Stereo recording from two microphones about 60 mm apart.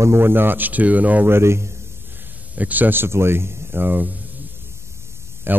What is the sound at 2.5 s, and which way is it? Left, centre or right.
A man's voice, right.